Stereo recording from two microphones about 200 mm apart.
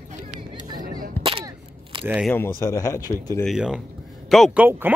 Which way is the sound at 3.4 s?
5° right (ahead or behind).